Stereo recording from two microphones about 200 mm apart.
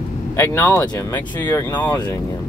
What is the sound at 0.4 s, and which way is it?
Speech, 10° left (ahead or behind).